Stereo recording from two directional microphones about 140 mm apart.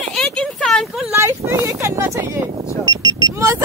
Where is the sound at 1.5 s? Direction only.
20° right (ahead or behind).